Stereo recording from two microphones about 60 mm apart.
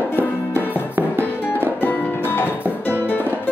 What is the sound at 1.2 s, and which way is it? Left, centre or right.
Music, left.